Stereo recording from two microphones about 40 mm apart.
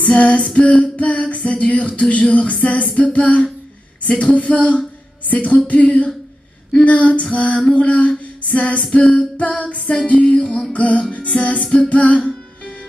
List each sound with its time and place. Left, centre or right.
0.0 s music: left
4.1 s a woman's voice: left
5.7 s music: left
8.9 s music: left
9.4 s music: left
10.7 s music: left